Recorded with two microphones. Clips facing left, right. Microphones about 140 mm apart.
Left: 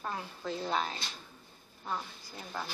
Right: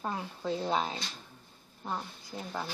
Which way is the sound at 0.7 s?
25° right (ahead or behind).